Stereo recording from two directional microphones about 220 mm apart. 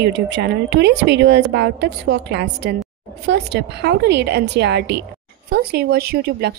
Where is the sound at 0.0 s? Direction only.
50° right (ahead or behind).